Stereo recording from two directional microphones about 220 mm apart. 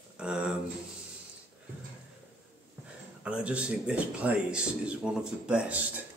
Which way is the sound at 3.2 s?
5° right (ahead or behind).